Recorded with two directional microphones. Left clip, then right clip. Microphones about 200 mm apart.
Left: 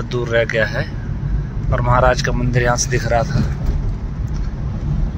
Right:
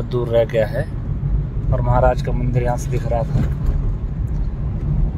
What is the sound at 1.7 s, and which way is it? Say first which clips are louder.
Speech: left 3 dB; centre (ahead or behind).